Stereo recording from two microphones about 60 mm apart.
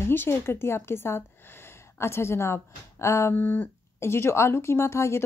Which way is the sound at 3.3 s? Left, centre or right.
Left.